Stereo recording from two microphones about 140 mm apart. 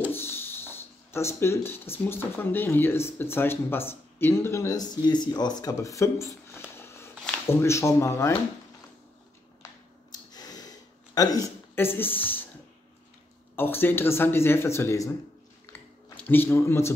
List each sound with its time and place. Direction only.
0.1 s speech: 15° left (ahead or behind)
10.1 s snort: 30° left (ahead or behind)
11.1 s speech: 25° left (ahead or behind)
13.6 s speech: 15° left (ahead or behind)
16.2 s speech: 15° left (ahead or behind)